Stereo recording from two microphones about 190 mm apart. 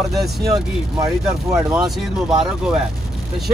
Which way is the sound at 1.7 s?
5° right (ahead or behind).